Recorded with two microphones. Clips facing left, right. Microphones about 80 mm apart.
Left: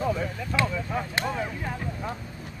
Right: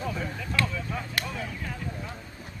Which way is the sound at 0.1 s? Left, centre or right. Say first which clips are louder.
Left 3 dB; left.